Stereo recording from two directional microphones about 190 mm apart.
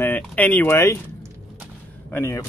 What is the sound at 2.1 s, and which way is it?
Speech, 15° left (ahead or behind).